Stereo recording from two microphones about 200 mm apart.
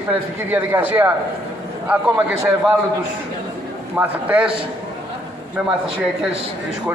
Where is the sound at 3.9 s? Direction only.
10° right (ahead or behind).